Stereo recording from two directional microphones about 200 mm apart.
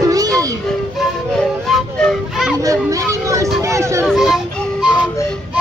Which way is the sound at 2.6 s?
15° right (ahead or behind).